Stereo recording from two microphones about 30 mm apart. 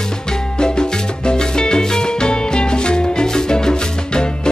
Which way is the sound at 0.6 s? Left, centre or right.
Left.